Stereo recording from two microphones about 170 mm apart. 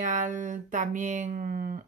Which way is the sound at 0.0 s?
50° right (ahead or behind).